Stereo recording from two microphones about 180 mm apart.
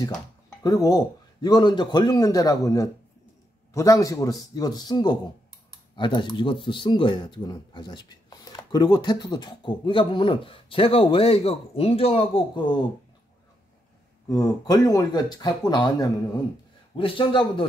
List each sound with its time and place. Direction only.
0.7 s speech: 20° left (ahead or behind)
14.3 s speech: 20° left (ahead or behind)